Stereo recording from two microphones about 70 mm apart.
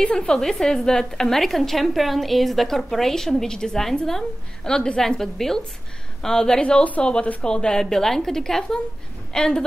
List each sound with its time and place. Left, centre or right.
0.0 s a woman's voice: centre